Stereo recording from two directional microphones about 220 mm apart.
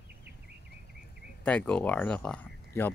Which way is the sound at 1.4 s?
5° left (ahead or behind).